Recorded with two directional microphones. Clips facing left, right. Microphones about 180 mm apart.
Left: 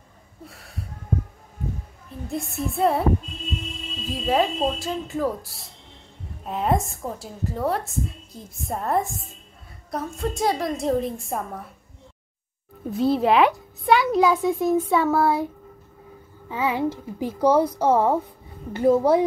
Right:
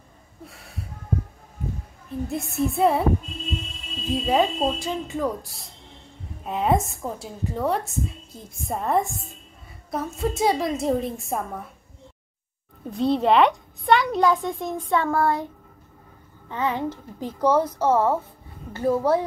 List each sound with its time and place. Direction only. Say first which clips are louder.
0.5 s a sound: left 1 dB; centre (ahead or behind)
2.2 s a woman's voice: right 2 dB; centre (ahead or behind)
4.1 s a woman's voice: right 1 dB; centre (ahead or behind)
12.9 s a woman's voice: even; 5° left (ahead or behind)
16.4 s a child's voice: left 2 dB; 10° left (ahead or behind)